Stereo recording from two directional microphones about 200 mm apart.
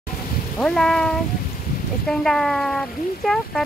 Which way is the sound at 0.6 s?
5° left (ahead or behind).